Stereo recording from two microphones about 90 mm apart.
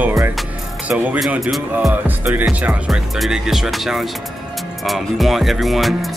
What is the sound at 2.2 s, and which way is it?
Speech, 25° right (ahead or behind).